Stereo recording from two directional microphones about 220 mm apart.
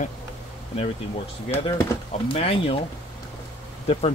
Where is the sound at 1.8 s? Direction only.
25° left (ahead or behind).